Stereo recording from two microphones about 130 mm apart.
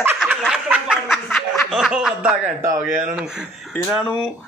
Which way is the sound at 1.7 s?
5° right (ahead or behind).